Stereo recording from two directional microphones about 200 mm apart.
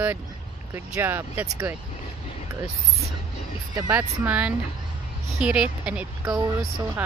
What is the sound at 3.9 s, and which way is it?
Speech, 10° right (ahead or behind).